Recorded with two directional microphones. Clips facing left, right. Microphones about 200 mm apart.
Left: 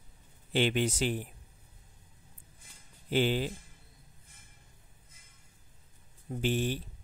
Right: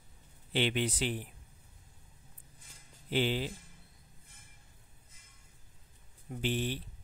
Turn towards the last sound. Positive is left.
turn(degrees=45)  # may be behind; listen again after turning